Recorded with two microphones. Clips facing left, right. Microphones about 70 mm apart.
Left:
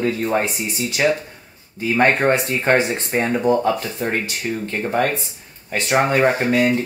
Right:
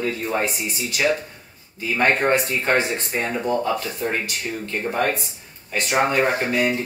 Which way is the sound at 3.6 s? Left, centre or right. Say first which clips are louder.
Left 3 dB; left.